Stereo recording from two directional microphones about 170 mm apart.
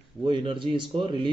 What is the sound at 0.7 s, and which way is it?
Speech, 30° right (ahead or behind).